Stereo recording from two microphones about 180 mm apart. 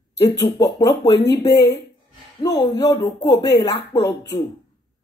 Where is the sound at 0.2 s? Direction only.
20° left (ahead or behind).